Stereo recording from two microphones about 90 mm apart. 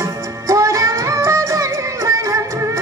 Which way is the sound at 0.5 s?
35° right (ahead or behind).